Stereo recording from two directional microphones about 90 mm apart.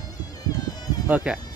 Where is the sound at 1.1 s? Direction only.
20° right (ahead or behind).